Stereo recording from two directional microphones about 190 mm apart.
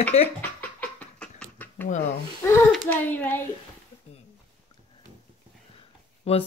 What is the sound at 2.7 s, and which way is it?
Speech, 10° left (ahead or behind).